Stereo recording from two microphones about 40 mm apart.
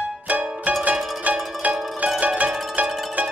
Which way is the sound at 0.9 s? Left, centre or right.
Centre.